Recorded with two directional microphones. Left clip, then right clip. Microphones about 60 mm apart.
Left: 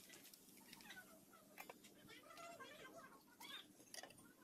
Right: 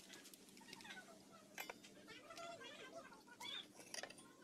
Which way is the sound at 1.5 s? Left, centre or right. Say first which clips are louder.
Right 6 dB; right.